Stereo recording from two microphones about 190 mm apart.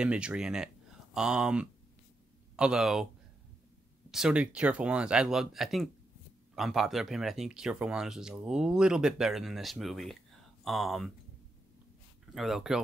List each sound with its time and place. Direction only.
0.0 s speech: 5° right (ahead or behind)
4.1 s speech: 5° right (ahead or behind)
12.4 s speech: centre (ahead or behind)